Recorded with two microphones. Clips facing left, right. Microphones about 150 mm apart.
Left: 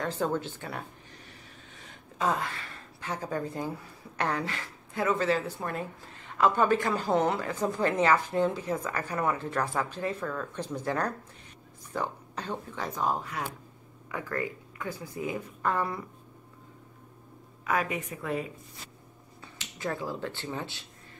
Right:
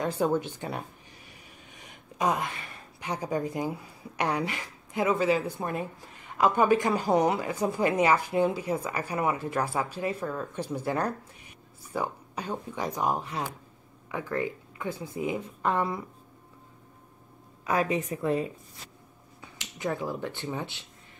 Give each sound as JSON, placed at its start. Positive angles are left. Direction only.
{"t": 0.0, "sound": "a woman's voice", "side_deg": -15}
{"t": 17.6, "sound": "a woman's voice", "side_deg": -30}
{"t": 19.4, "sound": "speech", "side_deg": -15}